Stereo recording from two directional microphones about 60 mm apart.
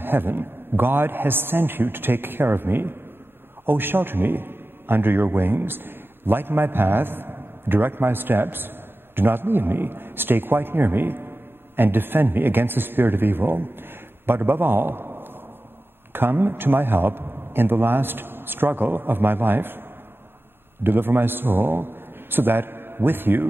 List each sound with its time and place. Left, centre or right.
0.0 s a man's voice: right